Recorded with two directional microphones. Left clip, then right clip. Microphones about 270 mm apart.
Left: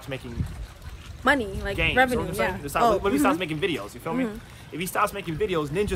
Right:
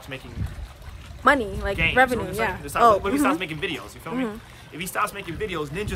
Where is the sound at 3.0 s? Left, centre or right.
Centre.